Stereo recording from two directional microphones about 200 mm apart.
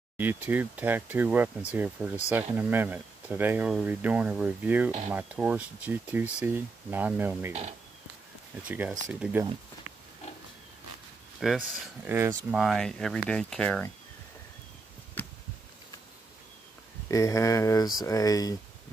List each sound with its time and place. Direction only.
0.2 s speech: 10° right (ahead or behind)
8.6 s speech: 5° right (ahead or behind)
11.3 s speech: centre (ahead or behind)
15.2 s a sound: 10° left (ahead or behind)
17.1 s speech: 15° left (ahead or behind)